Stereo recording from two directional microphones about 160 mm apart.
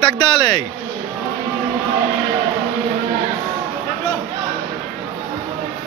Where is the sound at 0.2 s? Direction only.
25° left (ahead or behind).